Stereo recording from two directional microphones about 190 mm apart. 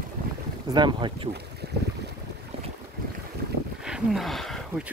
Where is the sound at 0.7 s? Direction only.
25° right (ahead or behind).